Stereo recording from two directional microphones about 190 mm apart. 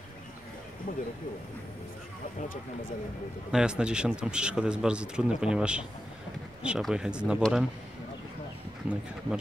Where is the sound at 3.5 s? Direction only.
5° right (ahead or behind).